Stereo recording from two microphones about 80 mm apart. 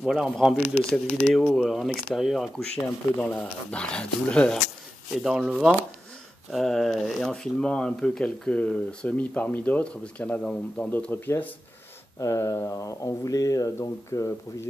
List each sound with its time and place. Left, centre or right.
0.0 s speech: centre
0.7 s speech: centre
1.5 s speech: centre
2.5 s speech: centre
5.1 s speech: centre
6.5 s speech: centre
11.1 s speech: left
12.2 s speech: left
13.7 s speech: left